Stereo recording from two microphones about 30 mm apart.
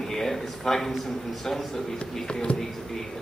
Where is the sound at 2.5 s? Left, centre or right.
Left.